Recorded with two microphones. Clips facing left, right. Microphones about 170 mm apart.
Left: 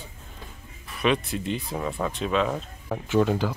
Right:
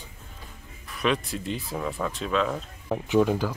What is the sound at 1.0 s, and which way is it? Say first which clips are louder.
Speech: left 2 dB; centre (ahead or behind).